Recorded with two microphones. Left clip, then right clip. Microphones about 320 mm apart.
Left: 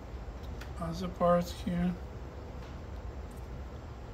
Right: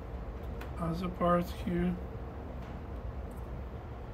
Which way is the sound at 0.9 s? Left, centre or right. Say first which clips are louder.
Left 2 dB; centre.